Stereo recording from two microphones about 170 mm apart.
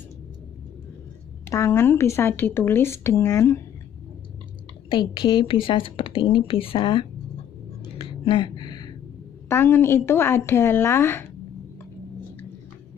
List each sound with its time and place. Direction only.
1.5 s speech: 15° left (ahead or behind)
4.8 s a woman's voice: 30° left (ahead or behind)
7.8 s a sound: 30° left (ahead or behind)
9.5 s speech: 15° left (ahead or behind)